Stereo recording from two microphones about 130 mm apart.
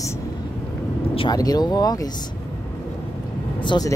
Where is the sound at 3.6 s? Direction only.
35° left (ahead or behind).